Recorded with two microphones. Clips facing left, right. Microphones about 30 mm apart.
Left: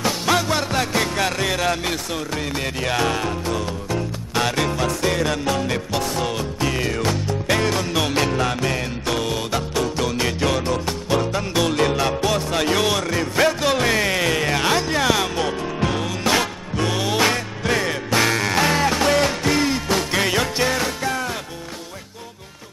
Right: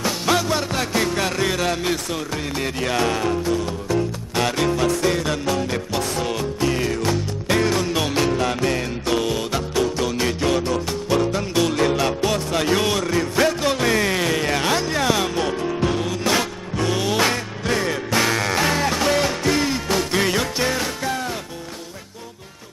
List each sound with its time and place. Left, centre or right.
0.0 s music: centre
12.7 s music: left
13.0 s music: centre